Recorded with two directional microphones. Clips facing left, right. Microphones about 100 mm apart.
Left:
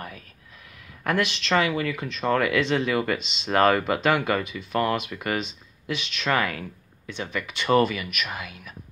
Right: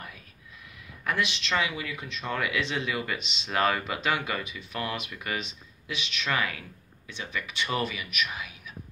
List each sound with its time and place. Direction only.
1.0 s speech: 55° left (ahead or behind)